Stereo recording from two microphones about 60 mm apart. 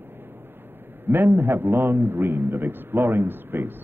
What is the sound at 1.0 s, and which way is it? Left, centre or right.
A man's voice, right.